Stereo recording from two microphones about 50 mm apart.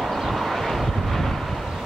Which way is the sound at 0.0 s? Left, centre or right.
Centre.